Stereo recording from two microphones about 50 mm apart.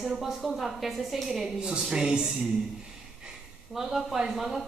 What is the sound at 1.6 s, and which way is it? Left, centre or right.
Speech, centre.